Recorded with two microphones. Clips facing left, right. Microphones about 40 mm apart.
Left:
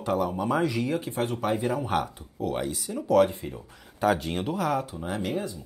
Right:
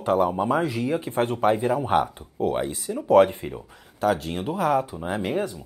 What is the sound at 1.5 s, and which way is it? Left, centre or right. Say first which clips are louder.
Speech: right 5 dB; centre.